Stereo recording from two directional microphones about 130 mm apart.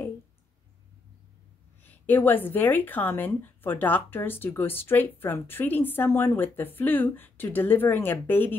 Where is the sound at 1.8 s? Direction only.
15° left (ahead or behind).